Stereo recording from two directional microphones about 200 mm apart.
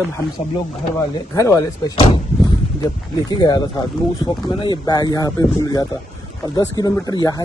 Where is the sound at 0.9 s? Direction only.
15° left (ahead or behind).